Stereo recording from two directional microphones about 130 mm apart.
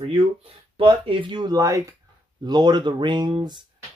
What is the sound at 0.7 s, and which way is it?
Speech, 45° right (ahead or behind).